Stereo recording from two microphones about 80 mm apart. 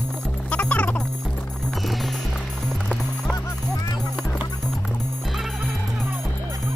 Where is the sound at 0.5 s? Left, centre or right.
Centre.